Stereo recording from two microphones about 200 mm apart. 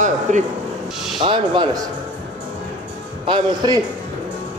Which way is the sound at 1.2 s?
25° right (ahead or behind).